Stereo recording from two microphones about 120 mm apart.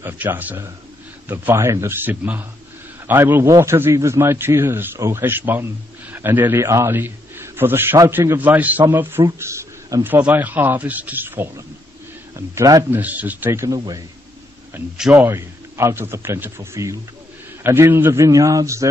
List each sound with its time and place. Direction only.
0.0 s a man's voice: 15° right (ahead or behind)
9.4 s a sound: 25° right (ahead or behind)
10.2 s a man's voice: 15° right (ahead or behind)
12.9 s a man's voice: 15° right (ahead or behind); by 14.0 s 30° right (ahead or behind)
15.1 s a man's voice: 20° right (ahead or behind)